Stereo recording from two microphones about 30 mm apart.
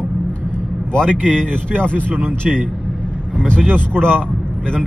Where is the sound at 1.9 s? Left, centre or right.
Right.